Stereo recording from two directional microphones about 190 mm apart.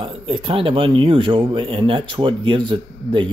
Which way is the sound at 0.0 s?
25° right (ahead or behind).